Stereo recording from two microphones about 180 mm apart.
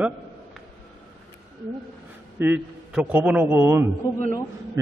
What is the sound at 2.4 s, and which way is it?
A man's voice, 10° right (ahead or behind).